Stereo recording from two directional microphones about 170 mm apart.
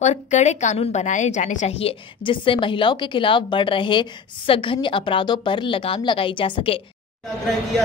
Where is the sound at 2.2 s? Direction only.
30° left (ahead or behind).